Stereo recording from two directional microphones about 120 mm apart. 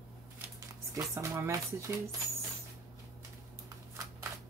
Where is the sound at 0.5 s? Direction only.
25° right (ahead or behind).